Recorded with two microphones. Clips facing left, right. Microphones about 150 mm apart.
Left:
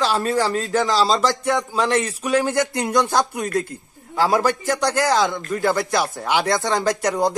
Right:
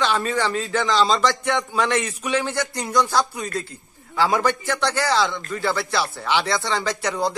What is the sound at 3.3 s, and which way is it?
A man's voice, 50° left (ahead or behind).